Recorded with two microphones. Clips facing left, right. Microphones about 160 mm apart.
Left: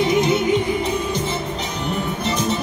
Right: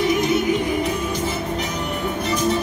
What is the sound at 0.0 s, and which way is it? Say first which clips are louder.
Music: left 1 dB; 25° left (ahead or behind).